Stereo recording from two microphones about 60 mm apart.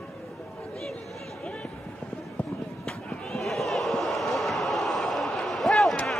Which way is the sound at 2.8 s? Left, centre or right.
Centre.